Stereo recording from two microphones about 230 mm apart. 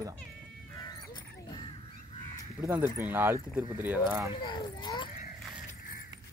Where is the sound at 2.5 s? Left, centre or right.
Centre.